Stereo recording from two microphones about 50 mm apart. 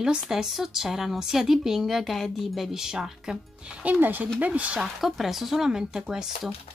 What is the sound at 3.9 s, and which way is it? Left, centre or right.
Speech, right.